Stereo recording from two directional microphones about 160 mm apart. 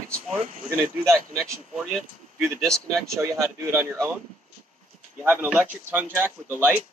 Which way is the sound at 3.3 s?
20° right (ahead or behind).